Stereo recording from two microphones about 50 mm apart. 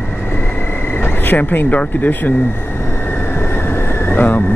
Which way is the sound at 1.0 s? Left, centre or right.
Left.